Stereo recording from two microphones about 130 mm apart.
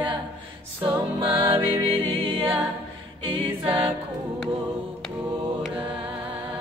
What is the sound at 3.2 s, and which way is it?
A capella, 45° right (ahead or behind).